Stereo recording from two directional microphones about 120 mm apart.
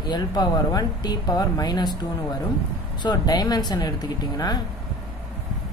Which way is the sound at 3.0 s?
35° left (ahead or behind).